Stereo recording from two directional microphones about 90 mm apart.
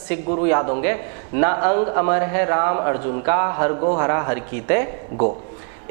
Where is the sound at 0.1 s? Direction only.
15° right (ahead or behind).